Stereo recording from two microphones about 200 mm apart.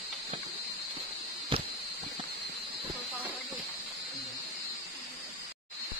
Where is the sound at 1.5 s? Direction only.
25° right (ahead or behind).